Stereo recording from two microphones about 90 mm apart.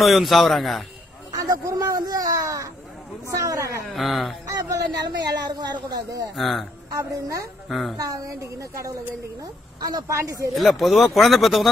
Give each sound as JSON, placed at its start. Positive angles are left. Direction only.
{"t": 0.0, "sound": "speech", "side_deg": 0}
{"t": 1.4, "sound": "a sound", "side_deg": -40}
{"t": 2.0, "sound": "a woman's voice", "side_deg": -45}
{"t": 3.9, "sound": "speech", "side_deg": 0}
{"t": 4.5, "sound": "speech", "side_deg": -45}
{"t": 6.3, "sound": "speech", "side_deg": 0}
{"t": 6.9, "sound": "a woman's voice", "side_deg": -40}
{"t": 7.6, "sound": "a woman's voice", "side_deg": 0}
{"t": 8.0, "sound": "a woman's voice", "side_deg": -40}
{"t": 10.0, "sound": "a woman's voice", "side_deg": -35}
{"t": 10.5, "sound": "speech", "side_deg": 0}